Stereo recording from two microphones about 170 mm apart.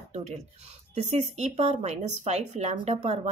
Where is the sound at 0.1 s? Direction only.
40° right (ahead or behind).